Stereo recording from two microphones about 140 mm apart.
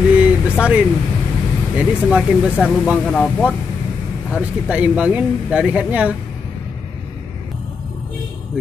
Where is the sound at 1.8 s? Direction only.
5° right (ahead or behind).